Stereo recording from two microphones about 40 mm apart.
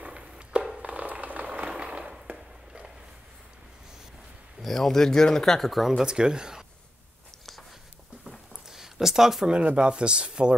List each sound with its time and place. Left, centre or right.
0.0 s a sound: right
4.6 s speech: centre
5.7 s speech: centre
6.0 s speech: right
8.6 s a sound: centre
9.5 s speech: right